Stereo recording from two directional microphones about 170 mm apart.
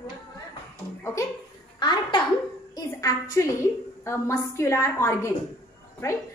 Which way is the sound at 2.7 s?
20° left (ahead or behind).